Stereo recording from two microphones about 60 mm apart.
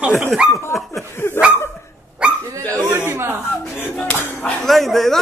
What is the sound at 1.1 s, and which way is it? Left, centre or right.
Dog, left.